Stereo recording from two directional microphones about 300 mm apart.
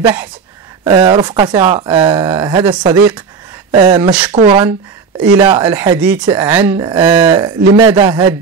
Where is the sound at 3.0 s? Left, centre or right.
Centre.